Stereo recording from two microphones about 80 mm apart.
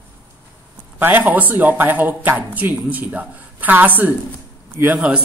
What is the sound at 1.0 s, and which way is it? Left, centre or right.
A man's voice, right.